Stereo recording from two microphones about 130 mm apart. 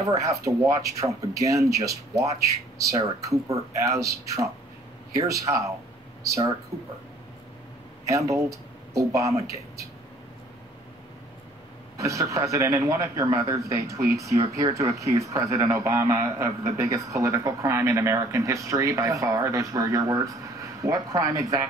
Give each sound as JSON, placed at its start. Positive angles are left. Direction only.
{"t": 0.0, "sound": "a man's voice", "side_deg": -25}
{"t": 8.0, "sound": "speech", "side_deg": -25}
{"t": 12.0, "sound": "a man's voice", "side_deg": -25}